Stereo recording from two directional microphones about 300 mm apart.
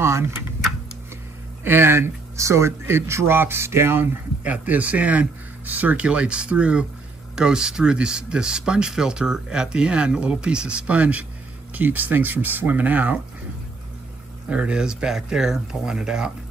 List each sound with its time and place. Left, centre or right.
1.6 s speech: centre
14.5 s speech: centre